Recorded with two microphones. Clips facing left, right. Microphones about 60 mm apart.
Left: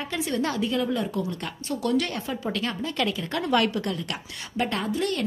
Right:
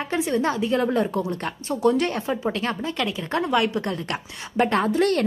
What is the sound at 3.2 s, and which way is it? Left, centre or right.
Speech, right.